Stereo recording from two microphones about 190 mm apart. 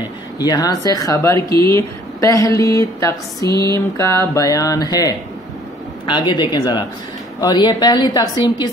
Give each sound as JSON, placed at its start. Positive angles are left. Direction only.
{"t": 0.4, "sound": "a woman's voice", "side_deg": 20}